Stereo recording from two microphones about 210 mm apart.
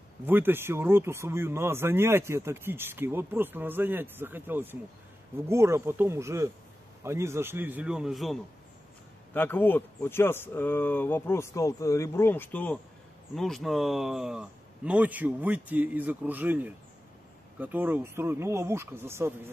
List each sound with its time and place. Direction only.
0.3 s speech: 10° right (ahead or behind)